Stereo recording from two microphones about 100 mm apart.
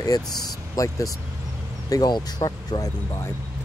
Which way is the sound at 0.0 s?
40° left (ahead or behind).